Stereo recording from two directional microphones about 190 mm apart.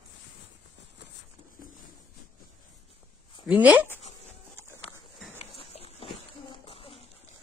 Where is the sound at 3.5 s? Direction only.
10° right (ahead or behind).